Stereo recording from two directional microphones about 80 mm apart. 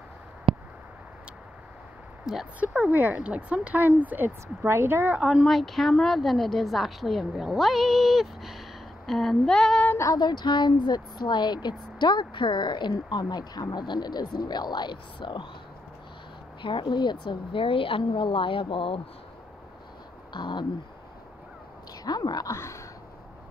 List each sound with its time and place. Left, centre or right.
0.5 s a sound: right
2.6 s speech: centre
5.1 s speech: centre
5.5 s a woman's voice: centre
10.1 s speech: left
16.6 s a woman's voice: left
20.3 s speech: left
22.0 s speech: left
22.6 s a sound: left